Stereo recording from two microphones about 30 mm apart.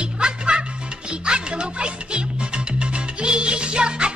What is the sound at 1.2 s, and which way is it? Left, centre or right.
Music, right.